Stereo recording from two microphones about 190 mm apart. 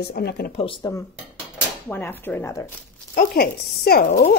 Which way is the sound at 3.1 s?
50° left (ahead or behind).